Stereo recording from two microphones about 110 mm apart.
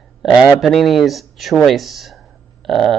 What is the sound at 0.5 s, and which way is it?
Speech, centre (ahead or behind).